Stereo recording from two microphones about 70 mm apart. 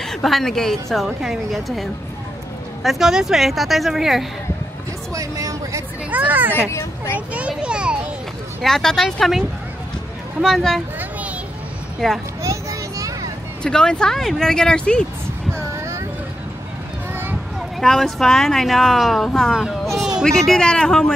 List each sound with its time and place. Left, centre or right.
0.0 s speech: centre
5.1 s a sound: right
6.0 s a child's voice: right
8.6 s speech: centre
12.0 s speech: centre
12.4 s children playing: right
13.6 s speech: centre
17.1 s a sound: right
17.6 s a child's voice: centre